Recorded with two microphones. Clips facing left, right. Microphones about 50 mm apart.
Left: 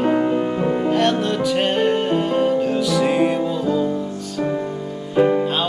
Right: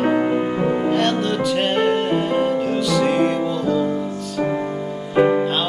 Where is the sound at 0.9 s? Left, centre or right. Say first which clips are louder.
Left 1 dB; centre.